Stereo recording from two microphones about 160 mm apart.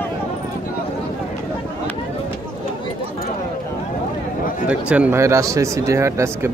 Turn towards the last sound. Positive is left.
turn(degrees=-15)  # may be behind; listen again after turning